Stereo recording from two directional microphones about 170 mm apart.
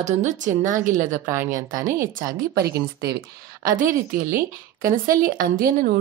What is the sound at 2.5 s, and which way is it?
Speech, 70° right (ahead or behind).